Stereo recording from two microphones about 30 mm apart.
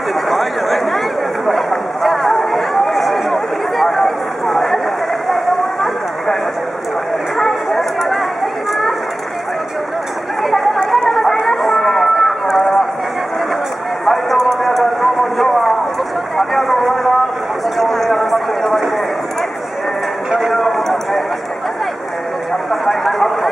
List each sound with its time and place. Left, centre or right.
0.3 s a sound: centre
7.3 s a sound: centre
10.4 s chatter: centre
10.9 s run: centre
14.0 s vehicle: centre
17.7 s clip-clop: centre
20.3 s clip-clop: centre
22.7 s vehicle: centre